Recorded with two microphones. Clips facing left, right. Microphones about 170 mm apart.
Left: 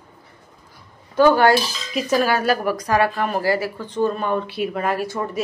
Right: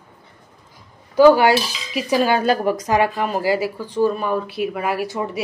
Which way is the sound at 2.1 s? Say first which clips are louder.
Right 2 dB; 20° right (ahead or behind).